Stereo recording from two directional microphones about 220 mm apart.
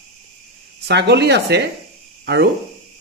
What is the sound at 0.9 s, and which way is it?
Speech, 50° right (ahead or behind).